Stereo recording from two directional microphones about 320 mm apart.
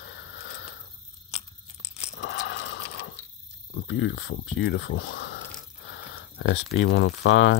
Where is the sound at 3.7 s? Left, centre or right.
Left.